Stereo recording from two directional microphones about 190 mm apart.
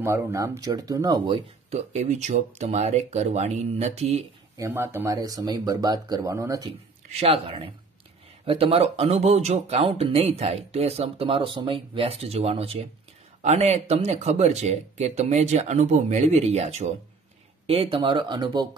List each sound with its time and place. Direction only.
0.0 s speech: 15° right (ahead or behind); by 4.2 s 35° right (ahead or behind)
4.6 s speech: 15° right (ahead or behind)
7.1 s speech: 30° right (ahead or behind)